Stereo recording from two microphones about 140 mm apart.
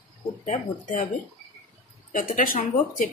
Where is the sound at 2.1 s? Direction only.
70° left (ahead or behind).